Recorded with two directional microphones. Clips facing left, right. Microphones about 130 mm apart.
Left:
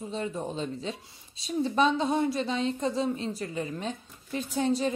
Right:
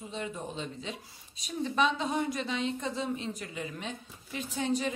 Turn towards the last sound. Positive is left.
turn(degrees=35)  # may be behind; listen again after turning